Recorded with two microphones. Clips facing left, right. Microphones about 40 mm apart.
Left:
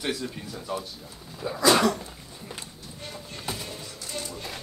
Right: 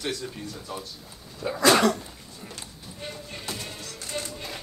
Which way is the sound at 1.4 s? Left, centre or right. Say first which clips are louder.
Right 2 dB; right.